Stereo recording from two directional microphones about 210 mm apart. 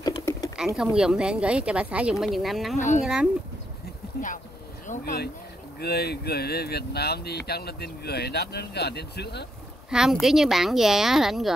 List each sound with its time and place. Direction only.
0.0 s typing: 15° left (ahead or behind)
0.7 s speech: 5° right (ahead or behind)
4.8 s speech: 40° left (ahead or behind)
9.8 s speech: centre (ahead or behind)